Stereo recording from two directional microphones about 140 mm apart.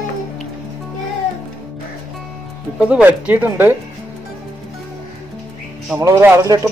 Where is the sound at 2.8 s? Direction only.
10° right (ahead or behind).